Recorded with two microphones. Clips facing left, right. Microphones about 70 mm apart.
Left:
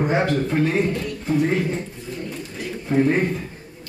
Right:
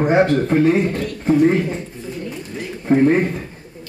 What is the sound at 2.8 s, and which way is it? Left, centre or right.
Speech, right.